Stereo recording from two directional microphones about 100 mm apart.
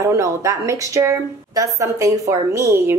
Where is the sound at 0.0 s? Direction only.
30° right (ahead or behind).